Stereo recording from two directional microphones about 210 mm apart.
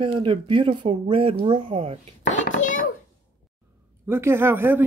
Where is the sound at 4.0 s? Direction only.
10° right (ahead or behind).